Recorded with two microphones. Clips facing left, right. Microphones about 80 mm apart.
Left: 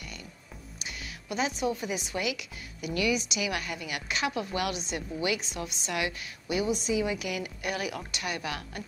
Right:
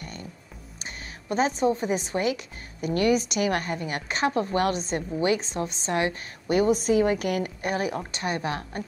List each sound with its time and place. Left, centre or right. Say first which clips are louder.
0.0 s music: right 5 dB; right
0.7 s a woman's voice: right 2 dB; right